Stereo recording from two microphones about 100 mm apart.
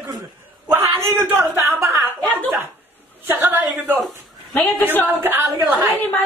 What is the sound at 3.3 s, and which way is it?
Speech, 20° right (ahead or behind).